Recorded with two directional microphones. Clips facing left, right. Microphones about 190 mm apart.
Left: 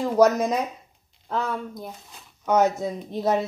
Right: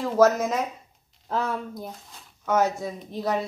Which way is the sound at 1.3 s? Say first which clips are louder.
Even; 5° right (ahead or behind).